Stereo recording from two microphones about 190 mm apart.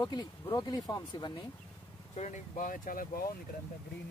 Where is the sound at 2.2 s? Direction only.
40° left (ahead or behind).